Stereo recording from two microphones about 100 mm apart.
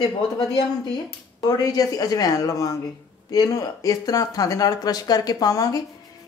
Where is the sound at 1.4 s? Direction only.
40° left (ahead or behind).